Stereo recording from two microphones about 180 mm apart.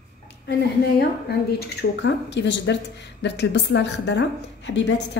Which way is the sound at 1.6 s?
70° left (ahead or behind).